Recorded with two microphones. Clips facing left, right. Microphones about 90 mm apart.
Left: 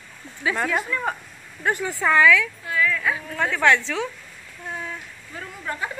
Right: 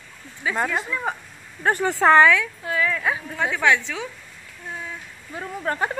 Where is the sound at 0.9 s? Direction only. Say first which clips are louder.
Left 1 dB; 10° right (ahead or behind).